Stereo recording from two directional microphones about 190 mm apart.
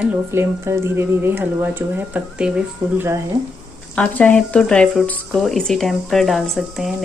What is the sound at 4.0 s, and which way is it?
Speech, 5° left (ahead or behind).